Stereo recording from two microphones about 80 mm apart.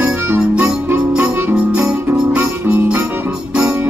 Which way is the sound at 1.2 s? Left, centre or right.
Right.